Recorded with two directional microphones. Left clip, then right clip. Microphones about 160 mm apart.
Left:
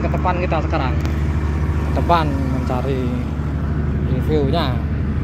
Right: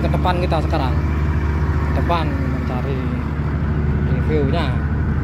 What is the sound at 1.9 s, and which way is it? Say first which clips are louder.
Speech: left 5 dB; 40° left (ahead or behind).